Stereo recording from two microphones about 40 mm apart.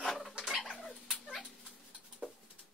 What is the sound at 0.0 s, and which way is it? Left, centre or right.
Rodents, centre.